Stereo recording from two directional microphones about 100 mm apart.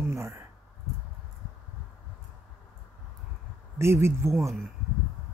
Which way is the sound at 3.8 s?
25° right (ahead or behind).